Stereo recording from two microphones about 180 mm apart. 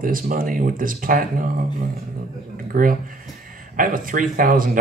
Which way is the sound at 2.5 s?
50° right (ahead or behind).